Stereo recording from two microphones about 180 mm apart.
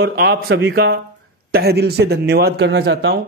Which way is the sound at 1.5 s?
60° right (ahead or behind).